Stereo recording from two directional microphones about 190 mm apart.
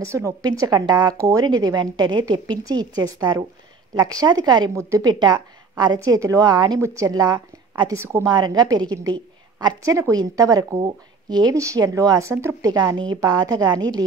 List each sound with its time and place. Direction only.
0.0 s a woman's voice: 15° right (ahead or behind)